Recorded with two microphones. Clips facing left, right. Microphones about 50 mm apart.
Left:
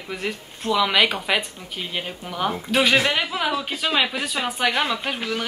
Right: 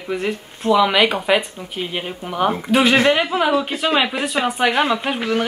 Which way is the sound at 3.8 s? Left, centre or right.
Centre.